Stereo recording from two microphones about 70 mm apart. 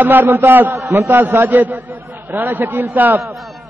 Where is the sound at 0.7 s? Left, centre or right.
Right.